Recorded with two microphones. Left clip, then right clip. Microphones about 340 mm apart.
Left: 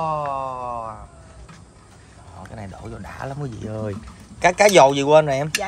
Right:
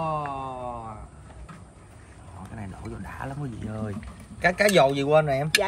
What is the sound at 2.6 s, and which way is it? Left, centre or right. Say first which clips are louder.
A man's voice: left 3 dB; left.